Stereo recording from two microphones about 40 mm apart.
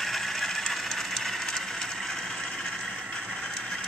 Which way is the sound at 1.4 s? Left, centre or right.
Centre.